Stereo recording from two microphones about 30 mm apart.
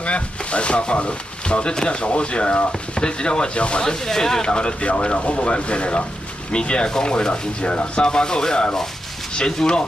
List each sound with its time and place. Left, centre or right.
0.0 s speech: left
3.8 s speech: left
8.0 s speech: left